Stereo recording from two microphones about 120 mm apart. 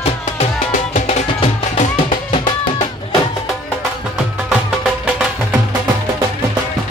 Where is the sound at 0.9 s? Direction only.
65° left (ahead or behind).